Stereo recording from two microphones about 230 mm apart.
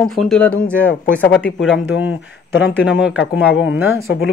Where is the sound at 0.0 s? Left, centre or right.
Centre.